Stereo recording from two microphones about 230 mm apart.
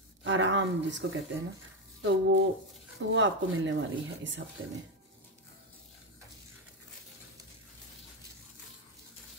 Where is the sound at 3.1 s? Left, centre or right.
Right.